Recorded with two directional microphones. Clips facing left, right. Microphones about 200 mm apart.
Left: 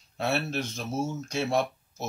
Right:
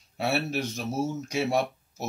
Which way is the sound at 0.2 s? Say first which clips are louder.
Right 1 dB; 10° right (ahead or behind).